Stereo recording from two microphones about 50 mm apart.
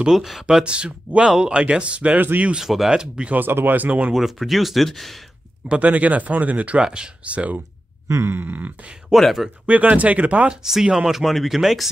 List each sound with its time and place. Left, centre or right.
0.1 s speech: centre
0.7 s speech: right
2.1 s speech: right
2.6 s speech: centre
2.9 s speech: centre
3.3 s speech: right
4.1 s speech: centre
5.7 s speech: right
6.8 s speech: centre
7.2 s speech: right
8.3 s speech: right
9.1 s speech: centre
9.7 s speech: right
10.5 s speech: centre